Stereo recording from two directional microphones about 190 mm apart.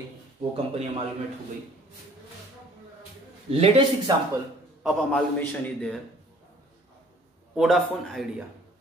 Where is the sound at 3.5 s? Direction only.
30° right (ahead or behind).